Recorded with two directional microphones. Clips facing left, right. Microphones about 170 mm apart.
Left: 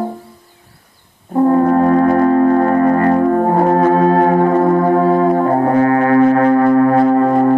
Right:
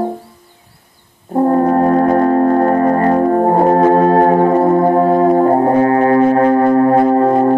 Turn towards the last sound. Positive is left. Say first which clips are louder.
# even
turn(degrees=-30)  # may be behind; listen again after turning